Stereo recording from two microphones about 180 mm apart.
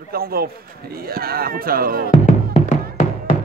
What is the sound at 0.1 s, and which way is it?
Speech, 55° right (ahead or behind).